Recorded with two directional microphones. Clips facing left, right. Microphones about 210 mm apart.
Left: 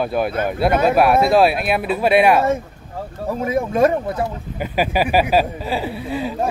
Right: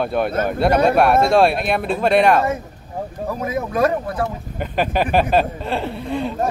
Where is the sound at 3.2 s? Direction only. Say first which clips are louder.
Left 4 dB; 25° left (ahead or behind).